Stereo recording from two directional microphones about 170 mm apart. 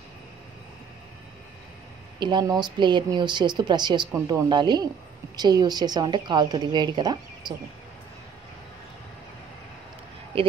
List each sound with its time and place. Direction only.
2.1 s speech: 25° right (ahead or behind)